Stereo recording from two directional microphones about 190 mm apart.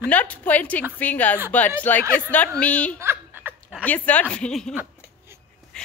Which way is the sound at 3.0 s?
10° right (ahead or behind).